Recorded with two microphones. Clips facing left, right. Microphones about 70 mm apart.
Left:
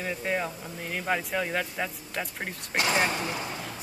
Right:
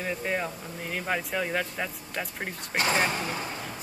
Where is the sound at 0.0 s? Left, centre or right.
Centre.